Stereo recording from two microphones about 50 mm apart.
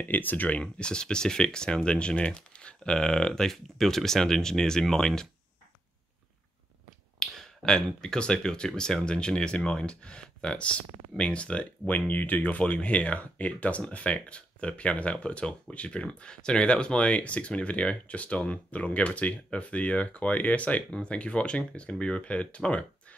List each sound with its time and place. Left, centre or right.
0.0 s speech: left; by 5.3 s centre
7.2 s speech: centre